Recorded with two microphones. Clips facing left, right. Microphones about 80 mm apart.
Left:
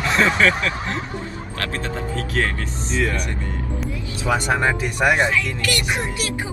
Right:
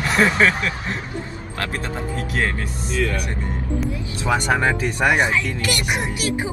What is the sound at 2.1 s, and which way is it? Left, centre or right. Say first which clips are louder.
Music: even; right.